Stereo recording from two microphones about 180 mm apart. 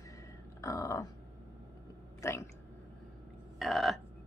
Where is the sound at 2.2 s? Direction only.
15° left (ahead or behind).